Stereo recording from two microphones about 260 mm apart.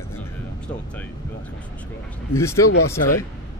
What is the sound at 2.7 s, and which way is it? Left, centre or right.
Speech, left.